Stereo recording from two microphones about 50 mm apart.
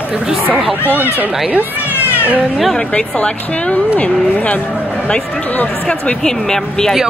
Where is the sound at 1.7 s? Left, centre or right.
Left.